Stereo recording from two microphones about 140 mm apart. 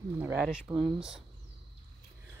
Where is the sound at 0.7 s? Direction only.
35° right (ahead or behind).